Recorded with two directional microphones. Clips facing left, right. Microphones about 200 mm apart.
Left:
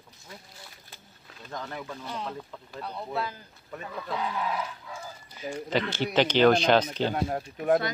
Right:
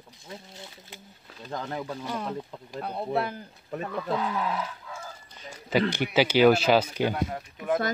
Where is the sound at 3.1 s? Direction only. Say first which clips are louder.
Right 5 dB; 60° right (ahead or behind).